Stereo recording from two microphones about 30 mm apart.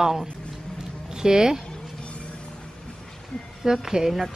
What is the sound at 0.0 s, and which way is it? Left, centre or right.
A woman's voice, centre.